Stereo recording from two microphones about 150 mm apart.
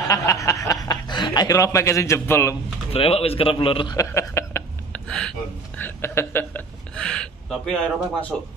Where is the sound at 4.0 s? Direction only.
20° left (ahead or behind).